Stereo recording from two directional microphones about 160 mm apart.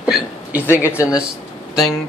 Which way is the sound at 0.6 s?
15° left (ahead or behind).